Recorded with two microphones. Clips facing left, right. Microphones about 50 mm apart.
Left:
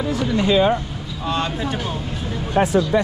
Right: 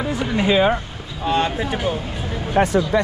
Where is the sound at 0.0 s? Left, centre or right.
Centre.